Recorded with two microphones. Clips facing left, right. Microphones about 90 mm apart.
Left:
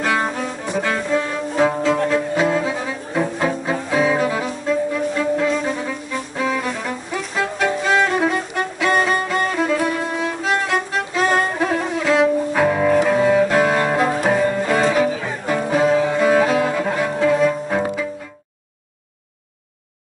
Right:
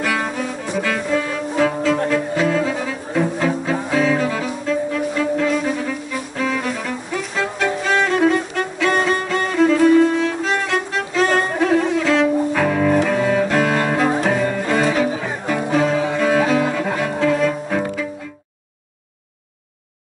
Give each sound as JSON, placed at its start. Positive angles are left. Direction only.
{"t": 0.0, "sound": "music", "side_deg": 25}
{"t": 1.6, "sound": "bowed string instrument", "side_deg": 20}
{"t": 2.0, "sound": "cello", "side_deg": 20}
{"t": 5.5, "sound": "music", "side_deg": 0}
{"t": 6.3, "sound": "violin", "side_deg": 10}
{"t": 13.0, "sound": "cello", "side_deg": 10}
{"t": 14.2, "sound": "music", "side_deg": 10}